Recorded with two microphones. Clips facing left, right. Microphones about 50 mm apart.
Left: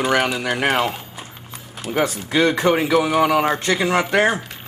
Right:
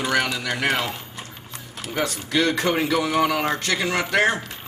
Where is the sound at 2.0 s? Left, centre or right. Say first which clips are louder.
Left 4 dB; left.